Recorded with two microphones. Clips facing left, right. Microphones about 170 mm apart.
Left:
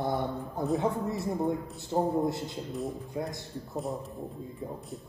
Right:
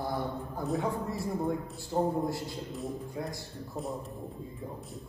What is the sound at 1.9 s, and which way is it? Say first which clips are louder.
Speech: left 2 dB; 20° left (ahead or behind).